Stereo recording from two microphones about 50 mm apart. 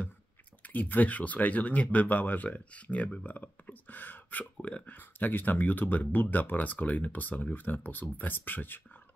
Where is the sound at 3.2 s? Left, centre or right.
Left.